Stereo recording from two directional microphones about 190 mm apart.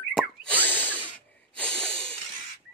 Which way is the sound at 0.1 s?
5° left (ahead or behind).